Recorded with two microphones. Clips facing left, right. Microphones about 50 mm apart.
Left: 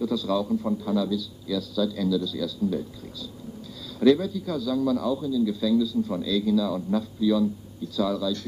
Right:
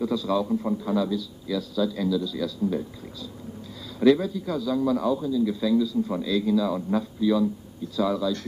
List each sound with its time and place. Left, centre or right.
0.0 s a man's voice: right
2.4 s a man's voice: right
4.0 s a man's voice: right